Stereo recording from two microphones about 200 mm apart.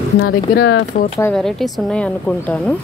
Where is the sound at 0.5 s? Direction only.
55° left (ahead or behind).